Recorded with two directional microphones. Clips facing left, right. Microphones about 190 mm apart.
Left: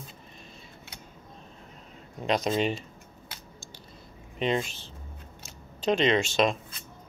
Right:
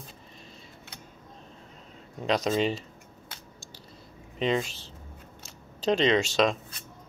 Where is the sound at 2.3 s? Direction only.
35° right (ahead or behind).